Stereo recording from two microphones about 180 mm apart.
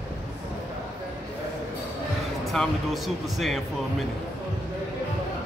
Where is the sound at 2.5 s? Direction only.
Centre (ahead or behind).